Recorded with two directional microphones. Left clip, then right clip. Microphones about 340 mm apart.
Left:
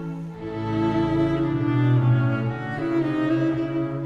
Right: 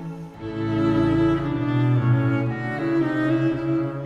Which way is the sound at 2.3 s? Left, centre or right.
Right.